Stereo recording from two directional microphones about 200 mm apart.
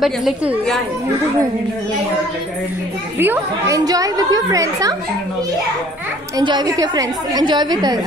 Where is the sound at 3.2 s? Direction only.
15° right (ahead or behind).